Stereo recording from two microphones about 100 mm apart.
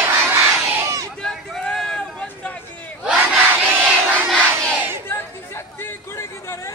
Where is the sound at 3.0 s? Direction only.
15° right (ahead or behind).